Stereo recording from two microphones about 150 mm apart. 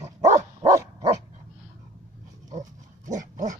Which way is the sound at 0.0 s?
50° right (ahead or behind).